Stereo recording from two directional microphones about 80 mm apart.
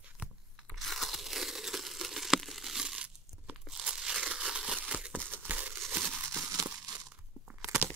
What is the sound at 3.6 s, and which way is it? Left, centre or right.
Crumpling, centre.